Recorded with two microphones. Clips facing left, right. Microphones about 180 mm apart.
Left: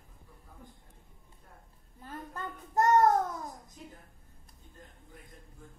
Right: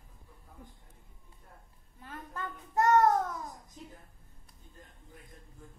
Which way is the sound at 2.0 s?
35° left (ahead or behind).